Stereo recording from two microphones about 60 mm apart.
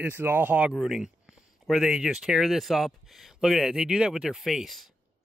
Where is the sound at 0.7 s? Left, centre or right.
Centre.